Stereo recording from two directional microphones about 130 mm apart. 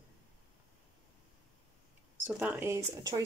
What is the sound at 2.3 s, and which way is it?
Speech, 10° right (ahead or behind).